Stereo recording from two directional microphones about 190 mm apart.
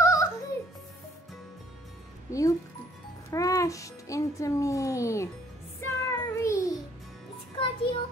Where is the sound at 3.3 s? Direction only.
15° left (ahead or behind).